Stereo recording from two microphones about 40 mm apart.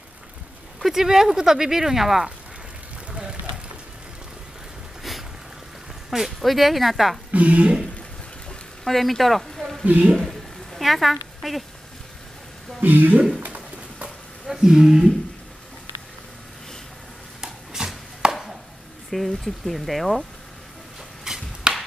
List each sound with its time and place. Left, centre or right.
0.7 s speech: centre
3.1 s run: right
6.0 s speech: centre
7.2 s speech: right
8.8 s speech: centre
10.0 s speech: centre
10.7 s a sound: centre
12.8 s speech: right
13.4 s bird: right
14.5 s speech: centre
17.4 s chopping: centre
19.0 s speech: centre
21.2 s a sound: centre